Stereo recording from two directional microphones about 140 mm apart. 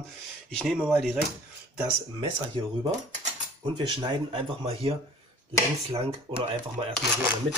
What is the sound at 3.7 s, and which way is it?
Speech, 35° right (ahead or behind).